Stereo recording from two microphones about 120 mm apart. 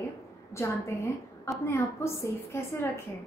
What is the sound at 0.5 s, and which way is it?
A woman's voice, 25° left (ahead or behind).